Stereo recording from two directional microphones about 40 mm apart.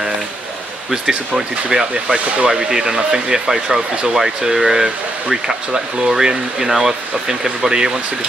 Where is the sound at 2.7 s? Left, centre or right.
Centre.